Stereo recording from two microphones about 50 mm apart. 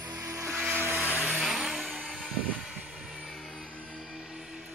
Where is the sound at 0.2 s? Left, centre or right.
Right.